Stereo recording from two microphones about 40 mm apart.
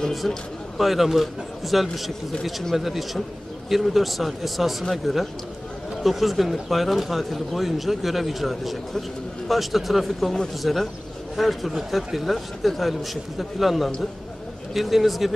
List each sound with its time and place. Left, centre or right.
0.7 s speech: centre
10.2 s speech: centre
10.6 s speech: centre